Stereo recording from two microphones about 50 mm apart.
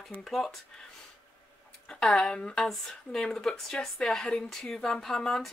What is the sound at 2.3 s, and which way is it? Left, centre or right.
Speech, centre.